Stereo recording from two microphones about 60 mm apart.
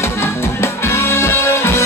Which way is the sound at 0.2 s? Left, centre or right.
Left.